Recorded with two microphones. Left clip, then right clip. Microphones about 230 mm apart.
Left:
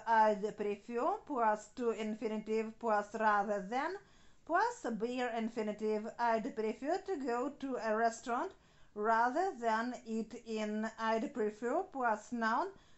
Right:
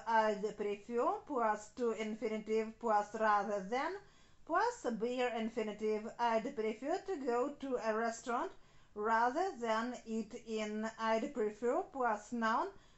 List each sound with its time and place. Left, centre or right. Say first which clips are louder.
0.0 s speech: left 3 dB; left